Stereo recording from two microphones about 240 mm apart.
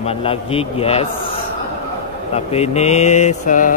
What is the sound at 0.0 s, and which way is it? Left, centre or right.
Mantra, left.